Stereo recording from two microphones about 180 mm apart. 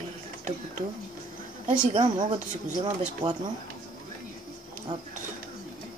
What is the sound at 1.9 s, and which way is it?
Speech, 30° right (ahead or behind).